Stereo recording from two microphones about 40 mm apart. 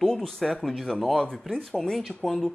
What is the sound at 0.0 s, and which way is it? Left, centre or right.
Speech, centre.